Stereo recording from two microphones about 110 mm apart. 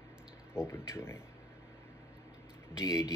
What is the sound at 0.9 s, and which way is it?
Speech, 25° left (ahead or behind).